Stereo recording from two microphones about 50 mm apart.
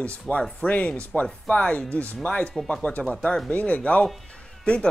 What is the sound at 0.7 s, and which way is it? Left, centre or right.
Speech, left.